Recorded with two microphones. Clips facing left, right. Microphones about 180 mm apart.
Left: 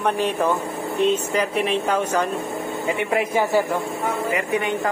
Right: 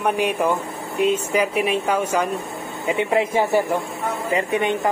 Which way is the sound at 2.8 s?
25° right (ahead or behind).